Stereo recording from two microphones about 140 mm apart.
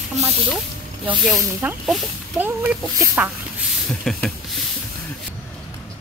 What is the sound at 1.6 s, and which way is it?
Speech, 10° right (ahead or behind).